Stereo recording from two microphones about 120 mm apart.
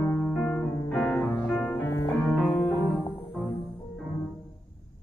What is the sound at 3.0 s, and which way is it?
Music, 50° left (ahead or behind).